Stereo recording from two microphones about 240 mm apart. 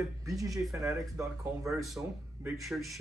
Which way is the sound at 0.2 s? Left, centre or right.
Centre.